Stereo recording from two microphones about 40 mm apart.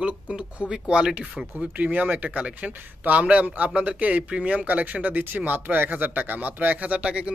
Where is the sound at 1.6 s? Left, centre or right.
Right.